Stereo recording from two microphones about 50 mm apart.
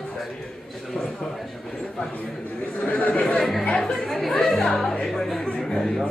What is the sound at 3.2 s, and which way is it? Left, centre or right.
Chatter, centre.